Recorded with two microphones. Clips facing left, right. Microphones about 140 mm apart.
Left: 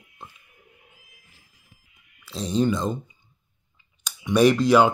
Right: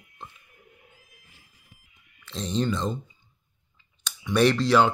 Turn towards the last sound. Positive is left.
turn(degrees=10)  # may be behind; listen again after turning